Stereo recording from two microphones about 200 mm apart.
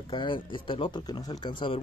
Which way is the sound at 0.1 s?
25° left (ahead or behind).